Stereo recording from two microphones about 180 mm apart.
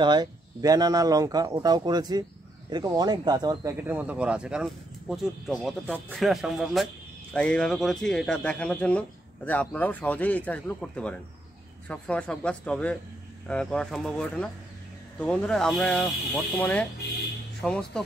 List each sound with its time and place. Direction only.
0.0 s speech: 25° right (ahead or behind); by 18.0 s 5° left (ahead or behind)